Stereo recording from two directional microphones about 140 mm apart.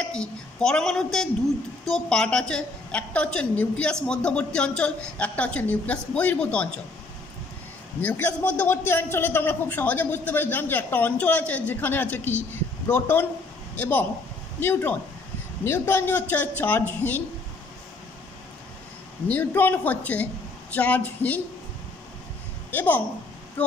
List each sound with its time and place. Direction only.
0.0 s a woman's voice: 5° left (ahead or behind)
8.0 s a woman's voice: 10° left (ahead or behind)
19.2 s a woman's voice: 15° left (ahead or behind)
22.7 s a woman's voice: 15° left (ahead or behind)